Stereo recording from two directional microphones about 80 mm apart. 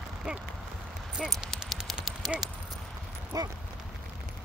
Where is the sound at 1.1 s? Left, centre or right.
Centre.